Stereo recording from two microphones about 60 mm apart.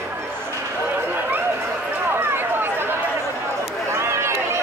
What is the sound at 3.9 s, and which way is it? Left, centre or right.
Run, right.